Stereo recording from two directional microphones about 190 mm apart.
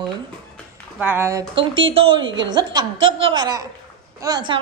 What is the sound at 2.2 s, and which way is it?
Speech, 75° right (ahead or behind).